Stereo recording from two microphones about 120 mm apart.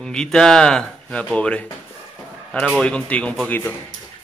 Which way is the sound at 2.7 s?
10° left (ahead or behind).